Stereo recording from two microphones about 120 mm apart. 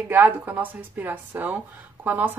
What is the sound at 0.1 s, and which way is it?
Speech, 15° right (ahead or behind).